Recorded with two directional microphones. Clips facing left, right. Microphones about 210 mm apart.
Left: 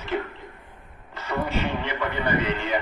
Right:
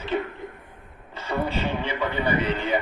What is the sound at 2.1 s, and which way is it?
Speech, 10° right (ahead or behind).